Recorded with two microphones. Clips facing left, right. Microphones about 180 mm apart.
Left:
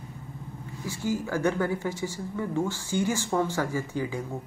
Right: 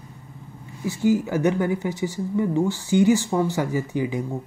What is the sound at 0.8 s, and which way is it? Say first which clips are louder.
Speech: right 9 dB; 15° right (ahead or behind).